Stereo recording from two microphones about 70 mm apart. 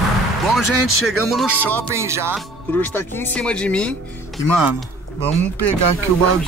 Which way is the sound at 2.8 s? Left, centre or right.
Left.